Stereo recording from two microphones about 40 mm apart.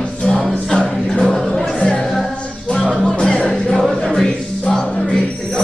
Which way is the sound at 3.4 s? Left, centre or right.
Centre.